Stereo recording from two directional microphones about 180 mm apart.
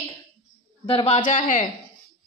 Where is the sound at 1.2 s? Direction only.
45° left (ahead or behind).